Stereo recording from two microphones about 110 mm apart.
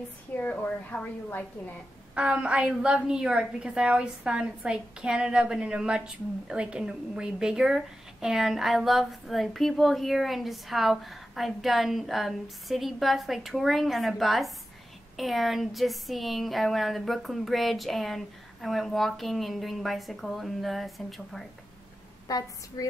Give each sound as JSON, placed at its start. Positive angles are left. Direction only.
{"t": 0.4, "sound": "a woman's voice", "side_deg": 15}
{"t": 2.1, "sound": "a woman's voice", "side_deg": -10}
{"t": 22.8, "sound": "speech", "side_deg": 30}